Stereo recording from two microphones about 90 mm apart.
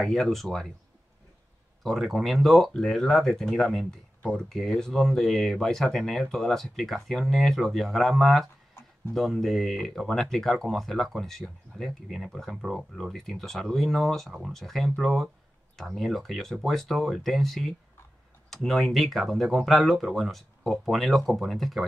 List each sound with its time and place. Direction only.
0.0 s speech: 5° left (ahead or behind)
1.8 s speech: centre (ahead or behind)